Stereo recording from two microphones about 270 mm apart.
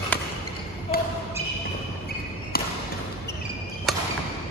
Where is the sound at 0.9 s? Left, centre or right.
Left.